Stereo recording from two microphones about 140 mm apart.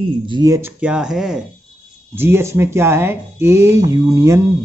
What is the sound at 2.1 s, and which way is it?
Speech, 15° right (ahead or behind).